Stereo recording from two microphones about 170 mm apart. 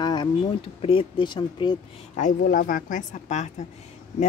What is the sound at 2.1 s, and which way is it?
Speech, 50° left (ahead or behind).